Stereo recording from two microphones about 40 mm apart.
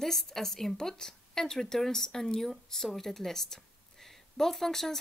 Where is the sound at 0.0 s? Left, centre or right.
Centre.